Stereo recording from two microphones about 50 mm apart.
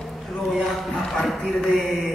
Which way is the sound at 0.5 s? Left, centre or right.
Centre.